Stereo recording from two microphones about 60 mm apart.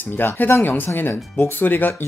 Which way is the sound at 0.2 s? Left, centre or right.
Left.